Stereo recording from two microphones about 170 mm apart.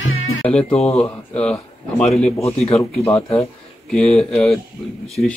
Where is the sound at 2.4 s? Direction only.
35° left (ahead or behind).